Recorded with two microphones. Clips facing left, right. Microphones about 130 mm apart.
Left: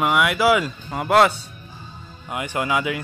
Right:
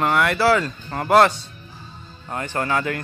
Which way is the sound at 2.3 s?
10° left (ahead or behind).